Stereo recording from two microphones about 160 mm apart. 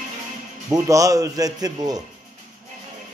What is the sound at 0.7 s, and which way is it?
A man's voice, 20° right (ahead or behind).